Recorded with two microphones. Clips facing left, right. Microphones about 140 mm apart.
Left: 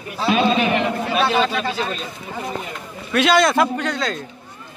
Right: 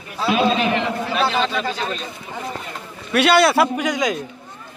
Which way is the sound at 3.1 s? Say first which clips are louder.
Right 1 dB; 5° right (ahead or behind).